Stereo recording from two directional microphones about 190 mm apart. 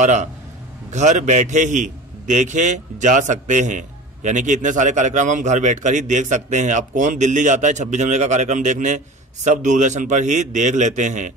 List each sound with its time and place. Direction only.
0.0 s a man's voice: 40° right (ahead or behind)